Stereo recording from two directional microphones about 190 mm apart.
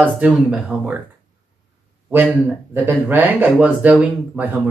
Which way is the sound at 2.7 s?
10° right (ahead or behind).